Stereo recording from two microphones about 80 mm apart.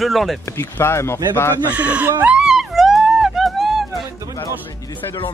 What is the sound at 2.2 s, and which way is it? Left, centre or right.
Music, centre.